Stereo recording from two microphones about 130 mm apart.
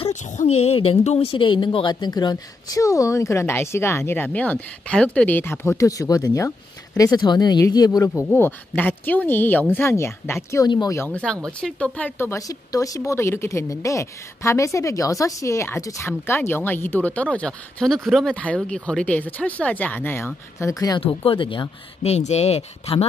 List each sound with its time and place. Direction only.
0.1 s a woman's voice: 65° left (ahead or behind); by 8.1 s 30° left (ahead or behind)
8.1 s speech: centre (ahead or behind)
8.4 s speech: 15° left (ahead or behind)
10.7 s speech: 30° left (ahead or behind)
11.0 s speech: 10° left (ahead or behind)
12.2 s a woman's voice: 25° left (ahead or behind)
21.0 s speech: 45° left (ahead or behind)
22.0 s speech: 55° left (ahead or behind)